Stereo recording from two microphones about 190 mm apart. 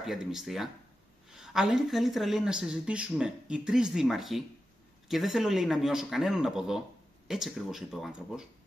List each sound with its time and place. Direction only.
0.0 s speech: centre (ahead or behind)